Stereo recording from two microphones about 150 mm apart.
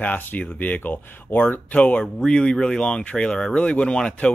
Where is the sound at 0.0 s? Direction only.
10° left (ahead or behind).